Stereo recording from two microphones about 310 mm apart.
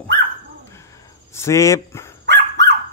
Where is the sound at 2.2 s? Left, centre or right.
Right.